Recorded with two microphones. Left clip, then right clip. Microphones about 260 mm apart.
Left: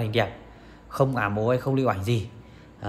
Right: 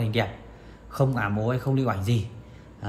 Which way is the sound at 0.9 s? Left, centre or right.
Left.